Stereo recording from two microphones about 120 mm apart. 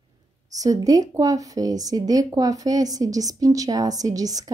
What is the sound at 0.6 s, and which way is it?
Speech, 30° right (ahead or behind).